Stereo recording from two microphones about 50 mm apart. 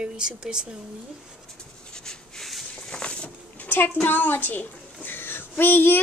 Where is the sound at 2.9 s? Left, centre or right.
Left.